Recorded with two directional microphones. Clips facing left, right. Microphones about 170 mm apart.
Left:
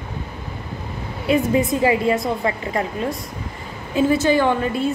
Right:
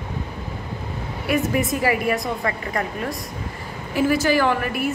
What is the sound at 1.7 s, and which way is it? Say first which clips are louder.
A woman's voice: left 3 dB; 25° left (ahead or behind).